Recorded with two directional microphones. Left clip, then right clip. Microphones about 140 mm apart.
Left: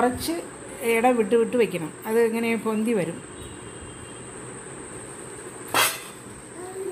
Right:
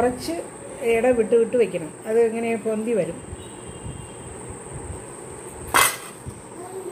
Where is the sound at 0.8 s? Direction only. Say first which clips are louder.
Right 2 dB; 80° left.